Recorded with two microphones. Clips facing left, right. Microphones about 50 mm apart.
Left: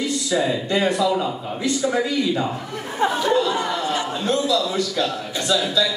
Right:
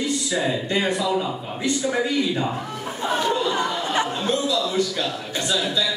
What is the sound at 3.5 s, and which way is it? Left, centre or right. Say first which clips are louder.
Chatter: even; right.